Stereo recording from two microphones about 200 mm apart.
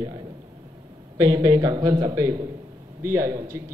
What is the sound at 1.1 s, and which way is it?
A man's voice, 20° right (ahead or behind).